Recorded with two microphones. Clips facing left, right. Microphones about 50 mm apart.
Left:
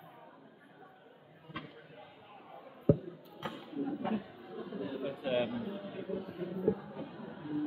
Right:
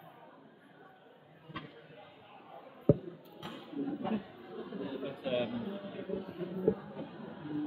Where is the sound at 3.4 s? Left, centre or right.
Left.